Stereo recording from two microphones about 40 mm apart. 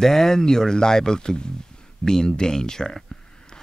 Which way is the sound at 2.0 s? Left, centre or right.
Centre.